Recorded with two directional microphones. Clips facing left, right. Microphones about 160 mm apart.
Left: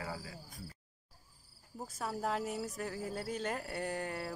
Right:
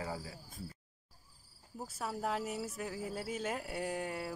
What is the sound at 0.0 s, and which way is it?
Cricket, 25° right (ahead or behind).